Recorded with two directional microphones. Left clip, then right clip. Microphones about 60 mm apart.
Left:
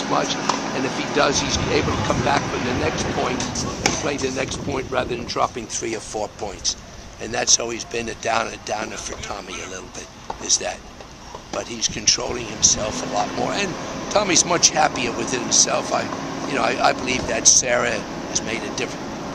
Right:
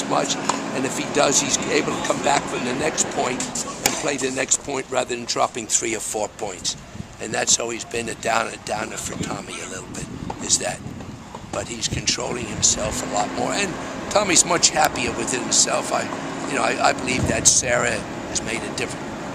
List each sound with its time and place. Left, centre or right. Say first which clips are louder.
0.7 s speech: right 1 dB; right
3.3 s a man's voice: left 2 dB; centre
4.0 s speech: even; right
7.3 s speech: left 2 dB; centre
11.5 s a man's voice: left 1 dB; centre